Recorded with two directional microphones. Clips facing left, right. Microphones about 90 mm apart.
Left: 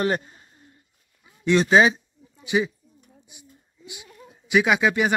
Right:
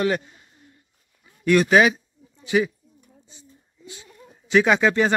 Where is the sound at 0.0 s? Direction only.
35° left (ahead or behind).